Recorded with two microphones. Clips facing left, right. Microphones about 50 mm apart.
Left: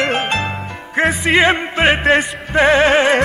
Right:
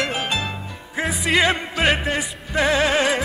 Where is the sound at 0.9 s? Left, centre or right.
Left.